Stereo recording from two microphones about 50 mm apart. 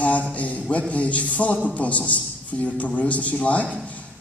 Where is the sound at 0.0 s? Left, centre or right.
Left.